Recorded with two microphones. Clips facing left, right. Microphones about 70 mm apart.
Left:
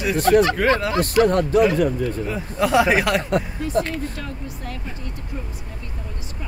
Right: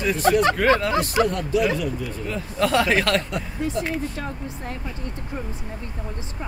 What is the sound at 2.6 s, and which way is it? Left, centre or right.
Speech, centre.